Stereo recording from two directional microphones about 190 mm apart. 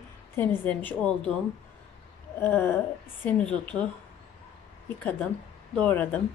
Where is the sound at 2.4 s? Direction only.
10° left (ahead or behind).